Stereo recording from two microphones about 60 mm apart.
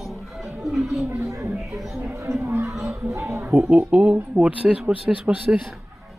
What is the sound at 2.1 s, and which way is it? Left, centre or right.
Chatter, right.